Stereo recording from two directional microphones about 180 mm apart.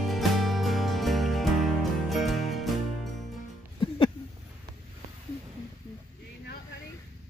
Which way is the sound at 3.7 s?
30° left (ahead or behind).